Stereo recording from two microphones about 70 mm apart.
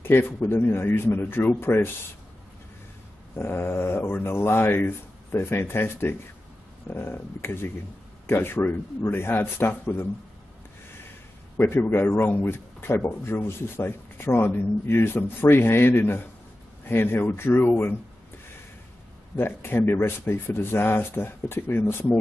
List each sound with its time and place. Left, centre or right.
0.0 s speech: left
3.3 s speech: left
11.5 s speech: left
19.3 s speech: left